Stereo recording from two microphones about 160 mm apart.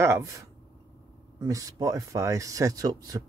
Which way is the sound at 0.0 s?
20° right (ahead or behind).